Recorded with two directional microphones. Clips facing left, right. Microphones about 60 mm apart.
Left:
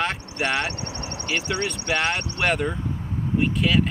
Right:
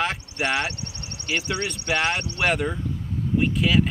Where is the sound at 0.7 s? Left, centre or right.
Left.